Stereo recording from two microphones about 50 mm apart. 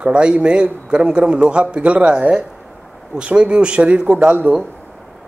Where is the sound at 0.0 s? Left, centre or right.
Right.